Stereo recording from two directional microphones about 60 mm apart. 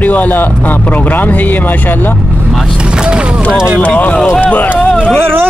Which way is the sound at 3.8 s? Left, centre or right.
Left.